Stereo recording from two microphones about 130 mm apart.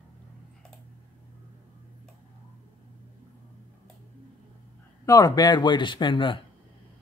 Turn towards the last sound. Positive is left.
turn(degrees=40)  # may be behind; listen again after turning